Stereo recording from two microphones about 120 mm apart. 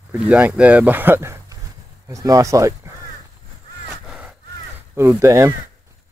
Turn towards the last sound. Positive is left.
turn(degrees=-25)  # may be behind; listen again after turning